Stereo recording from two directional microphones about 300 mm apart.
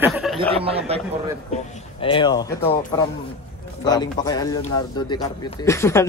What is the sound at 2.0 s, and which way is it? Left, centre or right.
A man's voice, centre.